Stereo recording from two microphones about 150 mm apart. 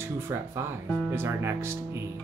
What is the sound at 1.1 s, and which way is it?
Music, 15° right (ahead or behind).